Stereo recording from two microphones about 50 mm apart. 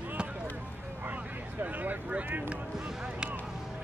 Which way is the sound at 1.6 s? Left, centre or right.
Right.